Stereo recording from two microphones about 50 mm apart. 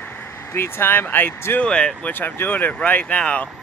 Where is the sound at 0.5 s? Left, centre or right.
Left.